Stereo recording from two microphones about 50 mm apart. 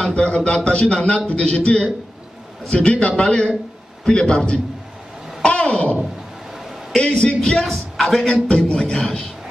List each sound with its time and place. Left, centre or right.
0.1 s speech: left
5.4 s a sound: left
6.6 s a sound: centre
7.0 s speech: left
7.7 s speech: centre
8.5 s speech: left
8.9 s speech: centre